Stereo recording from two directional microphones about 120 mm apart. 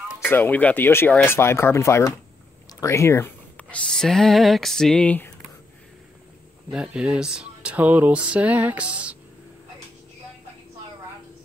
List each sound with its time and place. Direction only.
0.3 s speech: 15° left (ahead or behind)
6.7 s speech: 10° right (ahead or behind)